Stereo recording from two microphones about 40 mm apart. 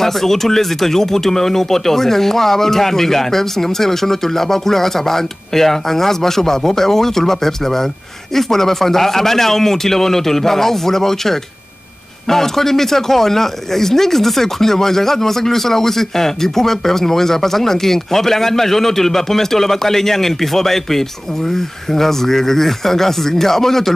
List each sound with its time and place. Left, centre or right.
0.0 s speech: centre